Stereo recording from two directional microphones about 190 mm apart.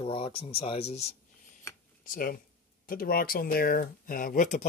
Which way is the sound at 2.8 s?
50° left (ahead or behind).